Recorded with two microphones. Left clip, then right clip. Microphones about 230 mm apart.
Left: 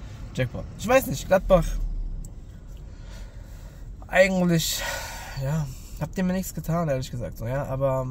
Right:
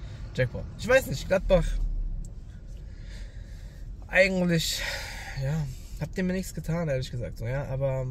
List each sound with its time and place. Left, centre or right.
0.4 s speech: centre
4.1 s speech: centre